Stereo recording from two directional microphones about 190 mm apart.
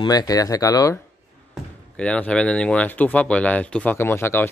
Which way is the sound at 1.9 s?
5° left (ahead or behind).